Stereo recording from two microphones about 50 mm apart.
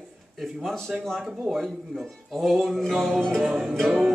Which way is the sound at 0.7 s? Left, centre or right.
Centre.